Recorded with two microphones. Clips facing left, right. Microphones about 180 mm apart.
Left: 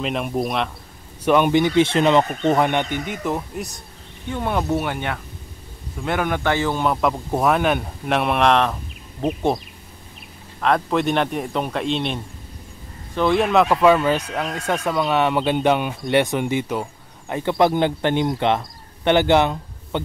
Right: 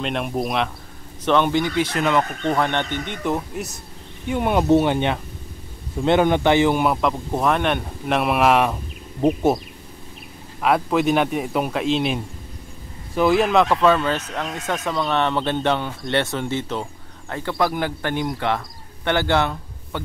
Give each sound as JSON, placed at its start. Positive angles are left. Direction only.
{"t": 0.0, "sound": "speech", "side_deg": 0}
{"t": 1.2, "sound": "speech", "side_deg": 10}
{"t": 2.5, "sound": "speech", "side_deg": 15}
{"t": 4.3, "sound": "speech", "side_deg": -15}
{"t": 6.9, "sound": "speech", "side_deg": 0}
{"t": 10.6, "sound": "speech", "side_deg": -5}
{"t": 13.7, "sound": "speech", "side_deg": 10}